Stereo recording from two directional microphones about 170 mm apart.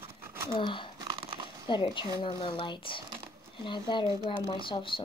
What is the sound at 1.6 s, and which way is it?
Speech, 25° left (ahead or behind).